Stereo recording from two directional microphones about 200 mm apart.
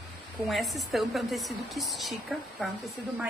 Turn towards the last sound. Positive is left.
turn(degrees=0)  # may be behind; listen again after turning